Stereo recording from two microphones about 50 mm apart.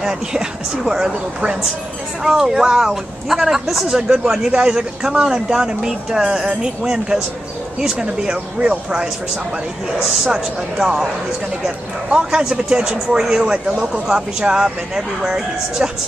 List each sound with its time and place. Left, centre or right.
0.0 s a man's voice: centre
10.0 s speech: centre